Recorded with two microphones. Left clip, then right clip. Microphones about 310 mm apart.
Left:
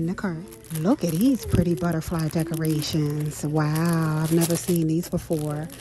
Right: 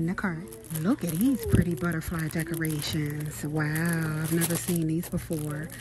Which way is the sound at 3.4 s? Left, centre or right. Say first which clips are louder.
Left 6 dB; right.